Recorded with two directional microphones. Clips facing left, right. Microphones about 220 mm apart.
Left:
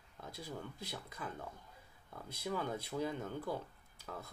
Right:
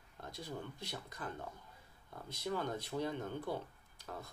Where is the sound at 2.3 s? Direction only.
10° left (ahead or behind).